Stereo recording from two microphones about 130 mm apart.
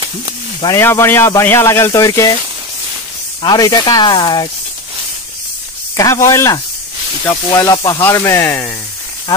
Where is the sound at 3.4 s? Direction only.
30° left (ahead or behind).